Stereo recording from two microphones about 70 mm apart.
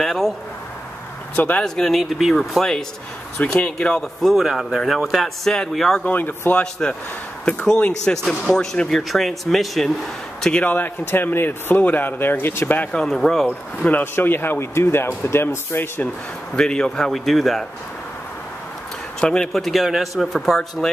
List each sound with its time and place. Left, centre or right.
0.0 s a sound: centre
1.3 s speech: left
1.6 s speech: centre
6.0 s a man's voice: left
6.5 s speech: centre
10.4 s a man's voice: centre
12.9 s speech: centre
13.8 s speech: left
16.5 s speech: centre
19.1 s speech: centre